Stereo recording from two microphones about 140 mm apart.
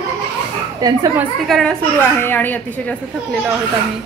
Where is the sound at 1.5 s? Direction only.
5° left (ahead or behind).